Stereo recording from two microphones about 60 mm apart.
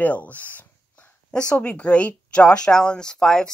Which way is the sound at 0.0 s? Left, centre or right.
Left.